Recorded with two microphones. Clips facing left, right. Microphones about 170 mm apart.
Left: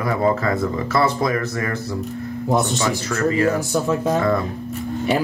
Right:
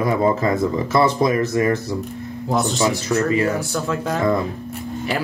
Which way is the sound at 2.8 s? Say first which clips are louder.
Right 2 dB; 20° right (ahead or behind).